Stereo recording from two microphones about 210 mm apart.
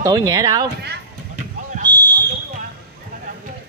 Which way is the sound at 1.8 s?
20° right (ahead or behind).